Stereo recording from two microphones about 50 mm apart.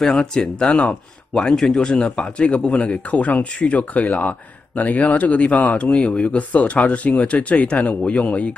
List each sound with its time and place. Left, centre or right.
0.1 s speech: centre